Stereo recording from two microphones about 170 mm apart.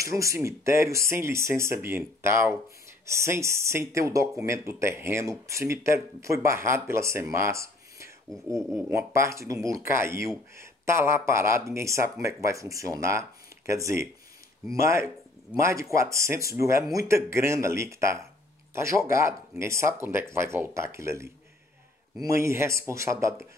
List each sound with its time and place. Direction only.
0.0 s speech: 20° right (ahead or behind)